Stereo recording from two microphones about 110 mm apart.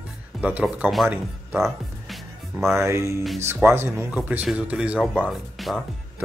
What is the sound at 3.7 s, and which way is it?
Speech, 20° right (ahead or behind).